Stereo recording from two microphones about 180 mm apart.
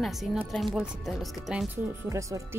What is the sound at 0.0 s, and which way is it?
Speech, centre (ahead or behind).